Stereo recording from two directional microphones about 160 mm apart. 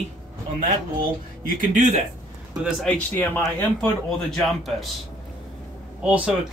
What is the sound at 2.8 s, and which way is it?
Speech, 10° left (ahead or behind).